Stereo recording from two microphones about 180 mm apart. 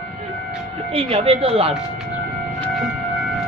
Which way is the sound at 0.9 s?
35° right (ahead or behind).